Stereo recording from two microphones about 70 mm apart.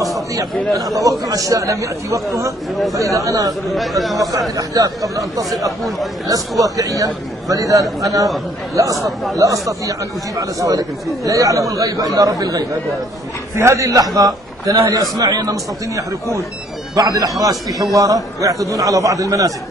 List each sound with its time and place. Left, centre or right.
1.2 s a man's voice: right
3.6 s speech: centre
4.3 s speech: right
6.6 s a man's voice: right
9.0 s speech: centre
9.4 s speech: right
13.6 s speech: right